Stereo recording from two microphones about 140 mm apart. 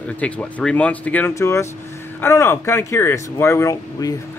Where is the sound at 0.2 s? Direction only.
10° left (ahead or behind).